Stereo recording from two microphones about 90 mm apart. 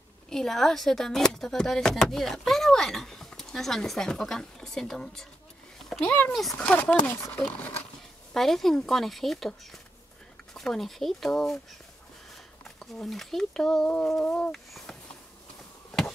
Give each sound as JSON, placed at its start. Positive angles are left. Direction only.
{"t": 0.3, "sound": "speech", "side_deg": 5}
{"t": 6.0, "sound": "speech", "side_deg": 20}
{"t": 8.3, "sound": "speech", "side_deg": 5}
{"t": 12.6, "sound": "speech", "side_deg": 0}